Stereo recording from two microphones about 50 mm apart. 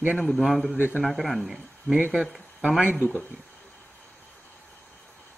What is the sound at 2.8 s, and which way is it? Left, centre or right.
Speech, right.